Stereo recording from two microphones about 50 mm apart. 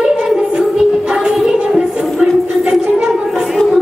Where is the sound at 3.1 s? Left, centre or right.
Centre.